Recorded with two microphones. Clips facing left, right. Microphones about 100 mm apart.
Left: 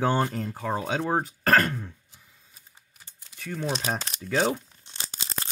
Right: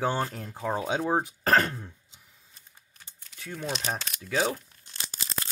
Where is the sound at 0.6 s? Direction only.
15° right (ahead or behind).